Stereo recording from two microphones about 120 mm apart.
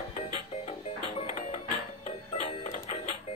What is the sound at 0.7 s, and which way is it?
Music, 55° left (ahead or behind).